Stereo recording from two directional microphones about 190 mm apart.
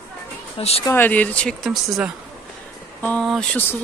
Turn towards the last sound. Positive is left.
turn(degrees=5)  # may be behind; listen again after turning